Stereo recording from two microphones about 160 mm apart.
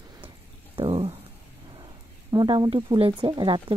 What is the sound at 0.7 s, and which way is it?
Speech, 35° right (ahead or behind).